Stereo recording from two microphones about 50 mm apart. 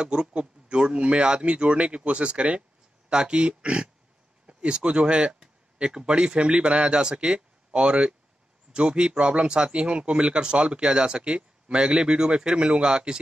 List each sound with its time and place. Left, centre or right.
0.0 s speech: centre